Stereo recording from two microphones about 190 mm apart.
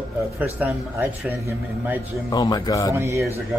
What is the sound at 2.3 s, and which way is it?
Speech, 20° left (ahead or behind).